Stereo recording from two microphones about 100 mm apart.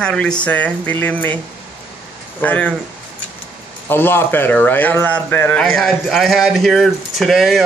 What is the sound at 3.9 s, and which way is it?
Speech, 20° left (ahead or behind).